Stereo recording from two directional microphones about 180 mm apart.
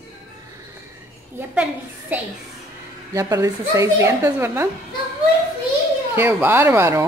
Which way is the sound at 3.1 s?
15° right (ahead or behind).